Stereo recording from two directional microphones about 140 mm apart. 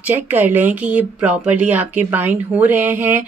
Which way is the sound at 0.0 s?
15° right (ahead or behind).